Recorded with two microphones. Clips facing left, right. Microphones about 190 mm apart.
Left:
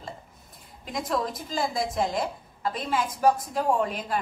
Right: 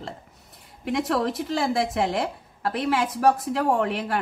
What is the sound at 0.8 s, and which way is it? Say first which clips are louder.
A woman's voice: right 5 dB; 70° right (ahead or behind).